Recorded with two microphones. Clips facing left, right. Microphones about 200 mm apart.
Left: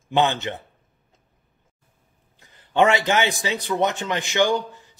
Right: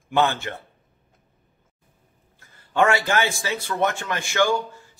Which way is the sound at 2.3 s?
20° left (ahead or behind).